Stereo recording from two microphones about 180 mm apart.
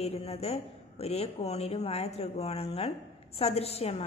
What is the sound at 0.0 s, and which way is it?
A woman's voice, 35° left (ahead or behind).